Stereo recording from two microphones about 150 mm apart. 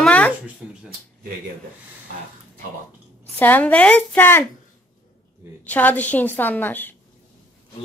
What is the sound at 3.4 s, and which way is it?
A woman's voice, 10° left (ahead or behind).